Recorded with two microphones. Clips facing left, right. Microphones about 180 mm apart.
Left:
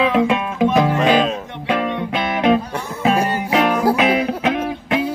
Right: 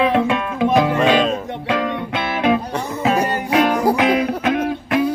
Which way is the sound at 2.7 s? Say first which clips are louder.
Even; 5° left (ahead or behind).